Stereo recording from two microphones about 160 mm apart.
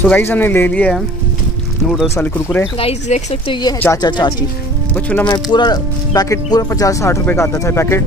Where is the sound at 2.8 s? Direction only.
40° left (ahead or behind).